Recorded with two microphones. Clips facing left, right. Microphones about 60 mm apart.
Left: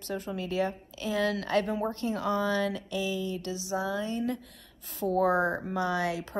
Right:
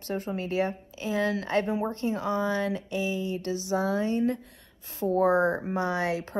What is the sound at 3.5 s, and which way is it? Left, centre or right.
Speech, right.